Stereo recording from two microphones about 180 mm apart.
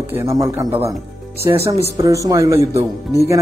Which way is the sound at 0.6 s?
30° right (ahead or behind).